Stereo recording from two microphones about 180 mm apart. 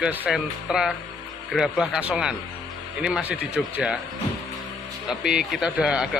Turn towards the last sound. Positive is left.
turn(degrees=-5)  # may be behind; listen again after turning